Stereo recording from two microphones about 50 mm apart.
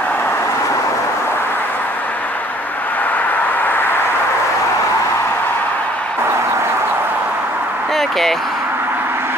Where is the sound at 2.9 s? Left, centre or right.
Left.